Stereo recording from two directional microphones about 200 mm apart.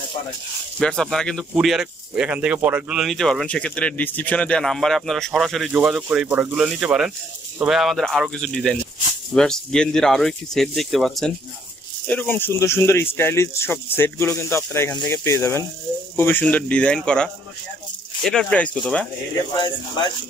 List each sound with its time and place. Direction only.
0.7 s speech: 5° left (ahead or behind)
19.5 s speech: 20° left (ahead or behind)